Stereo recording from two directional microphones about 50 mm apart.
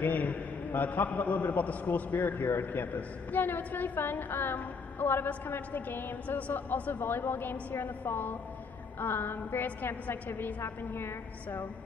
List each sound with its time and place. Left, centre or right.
0.0 s a man's voice: left